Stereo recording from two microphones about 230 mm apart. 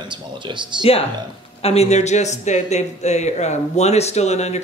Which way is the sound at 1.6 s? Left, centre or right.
Left.